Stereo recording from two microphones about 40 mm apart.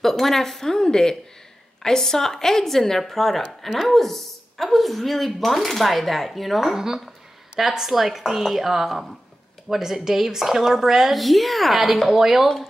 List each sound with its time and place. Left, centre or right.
0.0 s a woman's voice: centre
7.5 s a woman's voice: centre